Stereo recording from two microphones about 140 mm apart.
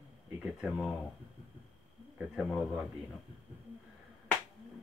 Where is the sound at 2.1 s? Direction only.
Centre (ahead or behind).